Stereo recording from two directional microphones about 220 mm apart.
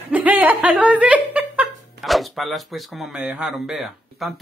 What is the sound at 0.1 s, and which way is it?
Speech, 5° right (ahead or behind).